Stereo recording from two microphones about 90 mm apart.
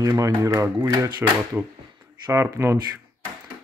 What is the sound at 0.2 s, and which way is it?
Speech, 40° right (ahead or behind).